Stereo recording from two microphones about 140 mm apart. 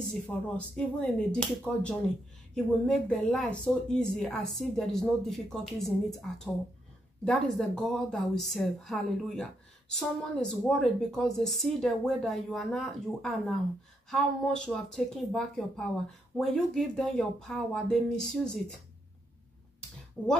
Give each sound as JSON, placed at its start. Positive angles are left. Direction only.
{"t": 0.1, "sound": "a woman's voice", "side_deg": 5}